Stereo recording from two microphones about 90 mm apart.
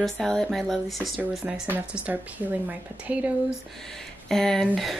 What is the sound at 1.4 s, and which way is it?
Speech, 15° right (ahead or behind).